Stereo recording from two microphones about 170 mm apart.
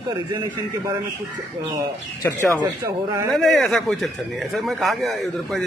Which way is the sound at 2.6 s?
20° right (ahead or behind).